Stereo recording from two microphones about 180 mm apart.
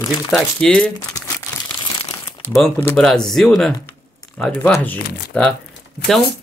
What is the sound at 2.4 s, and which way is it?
Speech, 5° left (ahead or behind).